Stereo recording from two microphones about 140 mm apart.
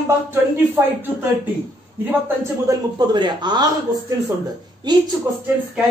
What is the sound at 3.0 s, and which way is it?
Speech, 30° right (ahead or behind).